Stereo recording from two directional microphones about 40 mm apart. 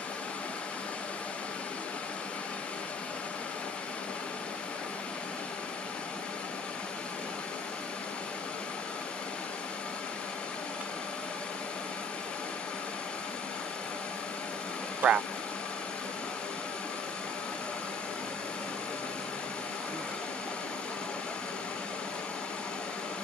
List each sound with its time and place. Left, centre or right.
15.0 s speech: right